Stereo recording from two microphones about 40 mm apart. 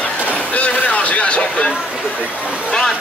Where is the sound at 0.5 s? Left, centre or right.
Left.